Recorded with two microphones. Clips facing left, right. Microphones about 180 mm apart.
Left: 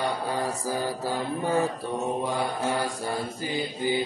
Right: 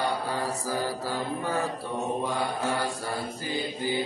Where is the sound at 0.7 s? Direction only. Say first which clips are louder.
Left 1 dB; 15° left (ahead or behind).